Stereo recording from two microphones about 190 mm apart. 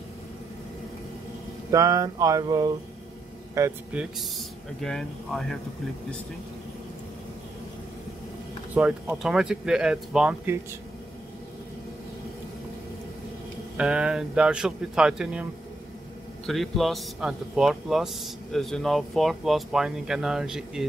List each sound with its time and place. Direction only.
1.7 s a sound: 15° right (ahead or behind)
3.5 s speech: 10° right (ahead or behind)
8.7 s speech: 5° right (ahead or behind)
13.7 s speech: 5° right (ahead or behind)
16.4 s speech: centre (ahead or behind)